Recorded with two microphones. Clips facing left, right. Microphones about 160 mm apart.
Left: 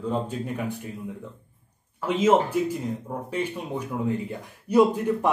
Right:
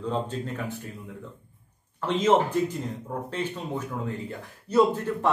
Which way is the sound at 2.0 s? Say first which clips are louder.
Left 1 dB; 10° left (ahead or behind).